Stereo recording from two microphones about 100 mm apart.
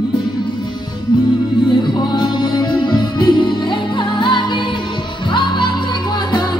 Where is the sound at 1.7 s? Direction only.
50° left (ahead or behind).